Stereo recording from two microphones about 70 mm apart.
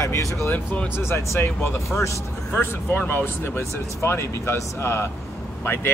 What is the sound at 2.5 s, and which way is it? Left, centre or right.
Speech, left.